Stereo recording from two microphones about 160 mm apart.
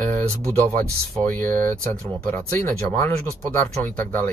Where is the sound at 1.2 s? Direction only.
10° left (ahead or behind).